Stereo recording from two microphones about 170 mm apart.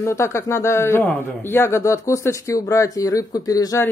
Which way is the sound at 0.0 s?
15° left (ahead or behind).